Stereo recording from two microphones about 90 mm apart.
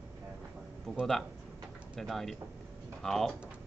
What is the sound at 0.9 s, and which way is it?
Speech, centre (ahead or behind).